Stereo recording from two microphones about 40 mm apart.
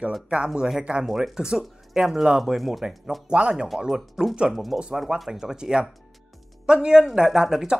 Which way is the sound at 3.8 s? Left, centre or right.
Centre.